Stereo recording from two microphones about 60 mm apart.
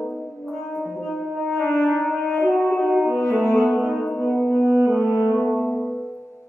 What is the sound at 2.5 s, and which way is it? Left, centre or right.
French horn, left.